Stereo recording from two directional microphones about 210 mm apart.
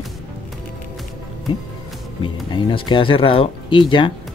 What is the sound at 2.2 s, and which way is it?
Speech, 25° left (ahead or behind).